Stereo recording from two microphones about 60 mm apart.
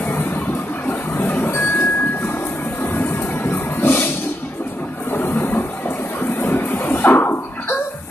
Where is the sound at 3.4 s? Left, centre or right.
Left.